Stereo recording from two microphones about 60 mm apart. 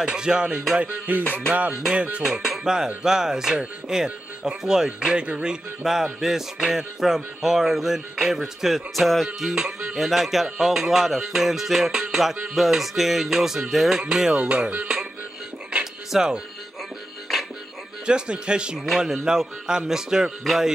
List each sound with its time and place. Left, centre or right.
0.0 s speech: centre
0.7 s music: right
2.2 s speech: centre
15.7 s music: centre
18.0 s speech: centre